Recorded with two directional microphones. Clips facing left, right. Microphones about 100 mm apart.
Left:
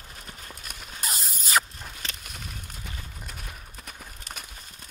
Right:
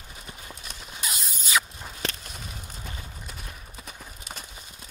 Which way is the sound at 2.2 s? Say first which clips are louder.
Right 1 dB; centre (ahead or behind).